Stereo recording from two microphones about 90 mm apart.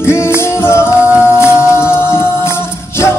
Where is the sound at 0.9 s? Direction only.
15° right (ahead or behind).